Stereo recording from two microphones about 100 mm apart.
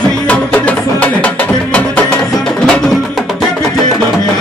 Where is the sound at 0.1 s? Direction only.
15° left (ahead or behind).